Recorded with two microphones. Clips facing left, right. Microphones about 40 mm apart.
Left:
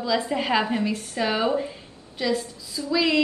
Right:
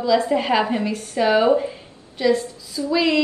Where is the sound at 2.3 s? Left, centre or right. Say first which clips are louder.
Right 7 dB; right.